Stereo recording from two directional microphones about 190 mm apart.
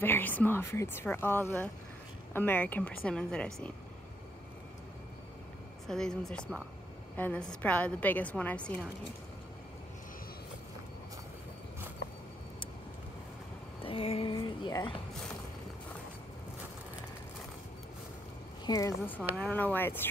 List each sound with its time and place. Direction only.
0.0 s a woman's voice: 10° left (ahead or behind)
5.9 s a woman's voice: 5° left (ahead or behind)
13.8 s speech: 30° left (ahead or behind)
18.7 s a woman's voice: 15° left (ahead or behind)